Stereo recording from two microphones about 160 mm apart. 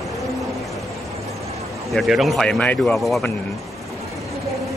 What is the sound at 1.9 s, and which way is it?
A man's voice, centre (ahead or behind).